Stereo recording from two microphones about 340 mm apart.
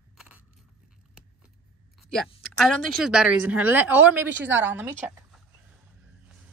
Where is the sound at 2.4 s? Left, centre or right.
Centre.